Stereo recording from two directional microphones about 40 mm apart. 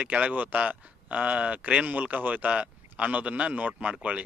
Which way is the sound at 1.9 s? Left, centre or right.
Right.